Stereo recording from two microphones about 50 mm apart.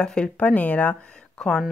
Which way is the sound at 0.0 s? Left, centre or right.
Centre.